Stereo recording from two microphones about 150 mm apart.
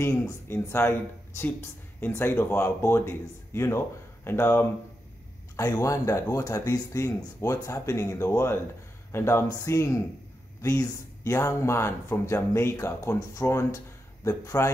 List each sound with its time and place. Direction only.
0.0 s speech: 15° left (ahead or behind)